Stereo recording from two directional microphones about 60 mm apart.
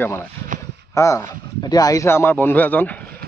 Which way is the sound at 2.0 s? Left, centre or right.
Left.